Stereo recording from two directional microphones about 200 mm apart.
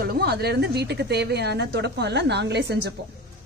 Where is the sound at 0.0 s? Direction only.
50° right (ahead or behind).